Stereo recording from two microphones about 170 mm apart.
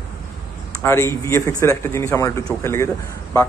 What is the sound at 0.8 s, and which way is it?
A man's voice, 15° left (ahead or behind).